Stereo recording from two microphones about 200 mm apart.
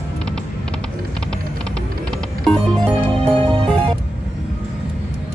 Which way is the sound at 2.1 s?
5° left (ahead or behind).